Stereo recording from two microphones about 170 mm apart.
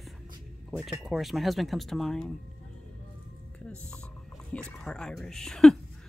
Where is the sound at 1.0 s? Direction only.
Centre (ahead or behind).